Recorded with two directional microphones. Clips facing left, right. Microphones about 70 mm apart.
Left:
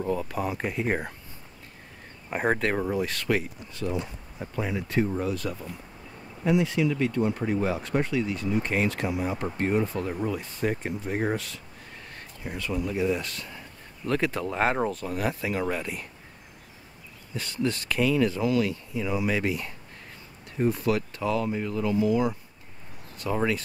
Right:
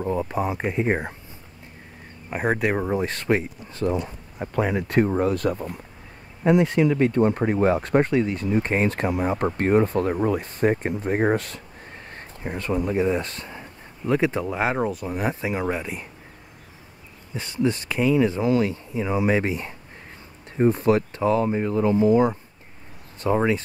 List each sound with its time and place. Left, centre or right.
0.0 s speech: right
2.2 s speech: centre
2.6 s speech: centre
2.9 s speech: right
3.8 s speech: right
4.6 s speech: right
14.0 s speech: centre
14.5 s speech: centre
15.0 s speech: right
17.3 s speech: right